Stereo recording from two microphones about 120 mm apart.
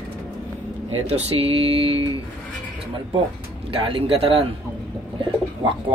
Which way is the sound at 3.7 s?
50° right (ahead or behind).